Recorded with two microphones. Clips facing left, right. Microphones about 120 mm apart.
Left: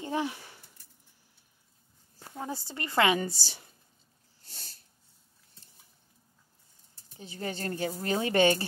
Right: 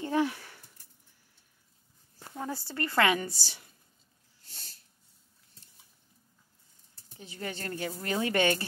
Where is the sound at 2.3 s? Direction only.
20° left (ahead or behind).